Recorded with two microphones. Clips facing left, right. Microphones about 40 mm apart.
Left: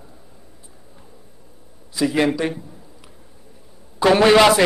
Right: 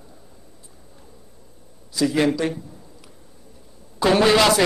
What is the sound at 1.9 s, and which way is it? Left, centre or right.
Speech, left.